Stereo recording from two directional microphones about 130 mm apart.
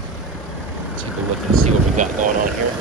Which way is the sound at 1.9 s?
75° right (ahead or behind).